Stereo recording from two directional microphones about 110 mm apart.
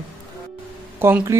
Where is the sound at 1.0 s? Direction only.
20° right (ahead or behind).